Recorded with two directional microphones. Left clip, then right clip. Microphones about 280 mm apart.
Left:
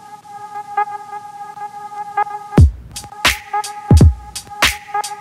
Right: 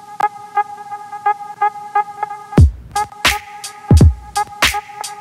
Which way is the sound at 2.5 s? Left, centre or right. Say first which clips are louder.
Right 4 dB; centre.